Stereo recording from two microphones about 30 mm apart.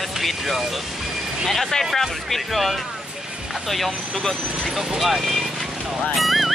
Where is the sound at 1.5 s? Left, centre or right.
Centre.